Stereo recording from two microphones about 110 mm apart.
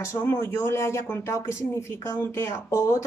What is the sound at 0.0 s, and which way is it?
Speech, 25° left (ahead or behind).